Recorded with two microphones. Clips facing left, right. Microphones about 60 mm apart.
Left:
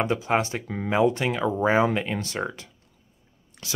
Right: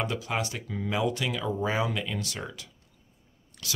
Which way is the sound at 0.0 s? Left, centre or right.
Left.